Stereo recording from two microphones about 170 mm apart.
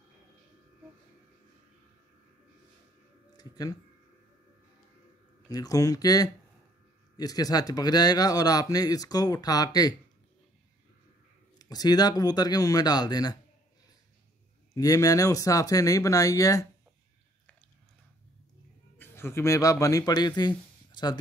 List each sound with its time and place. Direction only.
3.3 s speech: 20° left (ahead or behind)
5.5 s speech: 20° left (ahead or behind)
11.5 s speech: 25° left (ahead or behind)
14.8 s speech: 20° left (ahead or behind)
18.9 s speech: 15° left (ahead or behind)